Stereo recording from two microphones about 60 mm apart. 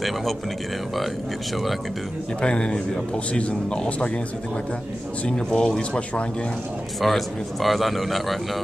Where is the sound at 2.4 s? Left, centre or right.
Centre.